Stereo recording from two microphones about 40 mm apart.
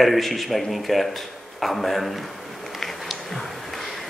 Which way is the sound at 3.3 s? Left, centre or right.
Centre.